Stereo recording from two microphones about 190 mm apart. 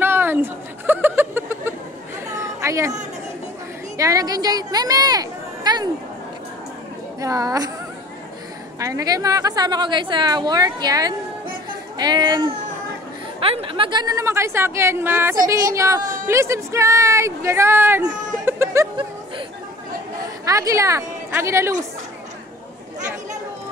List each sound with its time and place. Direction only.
0.0 s a sound: 10° right (ahead or behind)
2.3 s chatter: 15° right (ahead or behind)
3.9 s speech: 20° right (ahead or behind)
7.2 s a woman's voice: 15° right (ahead or behind)
8.7 s a woman's voice: 15° right (ahead or behind)
18.4 s a sound: 15° right (ahead or behind)
20.4 s a woman's voice: 15° right (ahead or behind)